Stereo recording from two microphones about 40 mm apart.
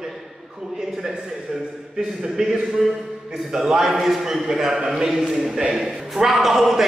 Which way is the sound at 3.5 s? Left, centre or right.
Centre.